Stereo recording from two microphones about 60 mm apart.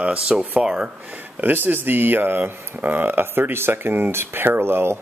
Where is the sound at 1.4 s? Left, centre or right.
Right.